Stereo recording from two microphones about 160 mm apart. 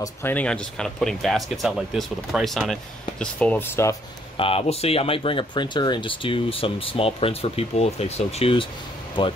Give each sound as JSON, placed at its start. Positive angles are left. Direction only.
{"t": 0.0, "sound": "speech", "side_deg": 15}
{"t": 4.4, "sound": "speech", "side_deg": 35}